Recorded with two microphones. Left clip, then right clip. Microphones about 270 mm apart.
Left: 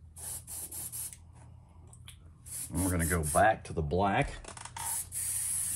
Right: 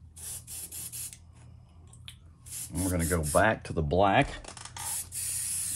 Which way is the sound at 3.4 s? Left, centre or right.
Right.